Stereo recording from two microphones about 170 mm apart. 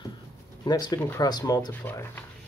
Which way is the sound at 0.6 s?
25° left (ahead or behind).